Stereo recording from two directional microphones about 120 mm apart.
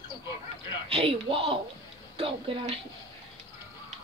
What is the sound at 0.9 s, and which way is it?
A woman's voice, 50° right (ahead or behind).